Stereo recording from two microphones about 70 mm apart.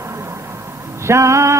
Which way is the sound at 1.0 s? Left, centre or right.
Right.